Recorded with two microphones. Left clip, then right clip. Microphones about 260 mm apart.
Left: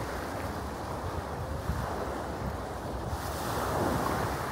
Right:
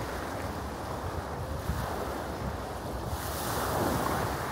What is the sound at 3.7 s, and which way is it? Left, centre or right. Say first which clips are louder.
Vehicle: even; right.